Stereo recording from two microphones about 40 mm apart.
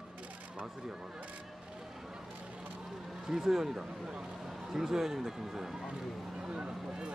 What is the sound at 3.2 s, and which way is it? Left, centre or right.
Speech, centre.